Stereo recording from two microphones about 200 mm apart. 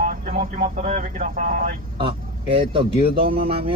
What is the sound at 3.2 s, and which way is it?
Speech, 50° right (ahead or behind).